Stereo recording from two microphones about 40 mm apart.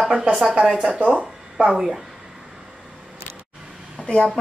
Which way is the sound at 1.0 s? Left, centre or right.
Right.